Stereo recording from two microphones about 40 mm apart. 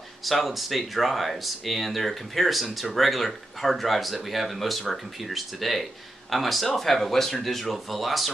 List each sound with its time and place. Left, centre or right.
0.2 s speech: centre